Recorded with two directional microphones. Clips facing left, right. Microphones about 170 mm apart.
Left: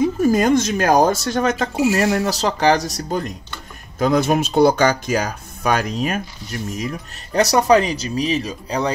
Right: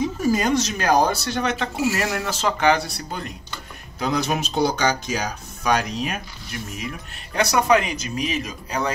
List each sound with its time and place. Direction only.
0.2 s speech: 50° left (ahead or behind); by 8.9 s 30° left (ahead or behind)